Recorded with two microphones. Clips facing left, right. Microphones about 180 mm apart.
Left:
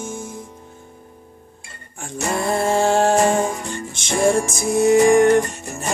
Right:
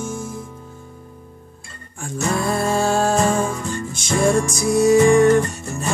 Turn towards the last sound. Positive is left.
turn(degrees=15)  # may be behind; listen again after turning